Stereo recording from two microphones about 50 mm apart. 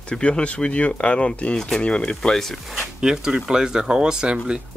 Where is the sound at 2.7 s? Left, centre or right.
Centre.